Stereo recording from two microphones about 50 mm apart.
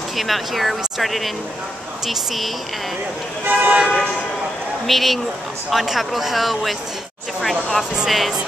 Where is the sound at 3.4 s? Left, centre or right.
Right.